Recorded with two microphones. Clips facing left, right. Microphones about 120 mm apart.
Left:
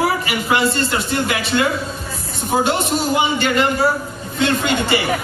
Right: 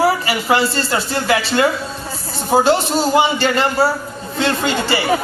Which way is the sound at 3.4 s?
30° right (ahead or behind).